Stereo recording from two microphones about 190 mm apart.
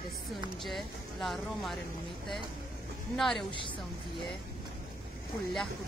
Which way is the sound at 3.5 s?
25° left (ahead or behind).